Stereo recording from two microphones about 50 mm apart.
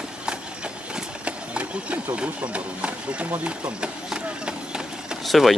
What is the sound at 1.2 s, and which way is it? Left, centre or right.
Horse, right.